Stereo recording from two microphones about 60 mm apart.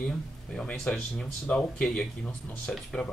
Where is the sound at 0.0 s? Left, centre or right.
Centre.